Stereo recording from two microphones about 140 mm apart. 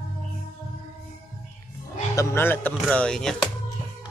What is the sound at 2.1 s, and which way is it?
Speech, 20° left (ahead or behind).